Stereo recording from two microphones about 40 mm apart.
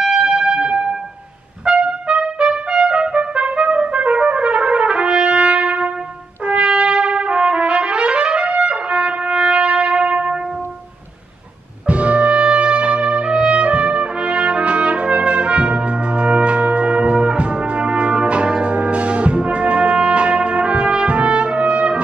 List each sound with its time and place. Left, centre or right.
0.0 s music: right
1.7 s trumpet: right
11.9 s brass instrument: right